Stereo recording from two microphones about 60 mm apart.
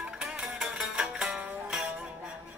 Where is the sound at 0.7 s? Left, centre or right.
Centre.